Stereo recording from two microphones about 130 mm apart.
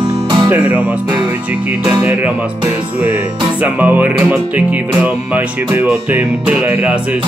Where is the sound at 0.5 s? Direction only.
10° right (ahead or behind).